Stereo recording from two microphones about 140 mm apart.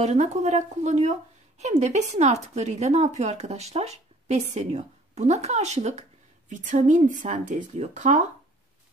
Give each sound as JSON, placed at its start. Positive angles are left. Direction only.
{"t": 0.0, "sound": "a woman's voice", "side_deg": -55}